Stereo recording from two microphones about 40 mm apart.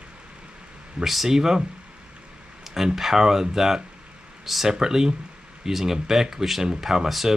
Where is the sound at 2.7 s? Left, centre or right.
Centre.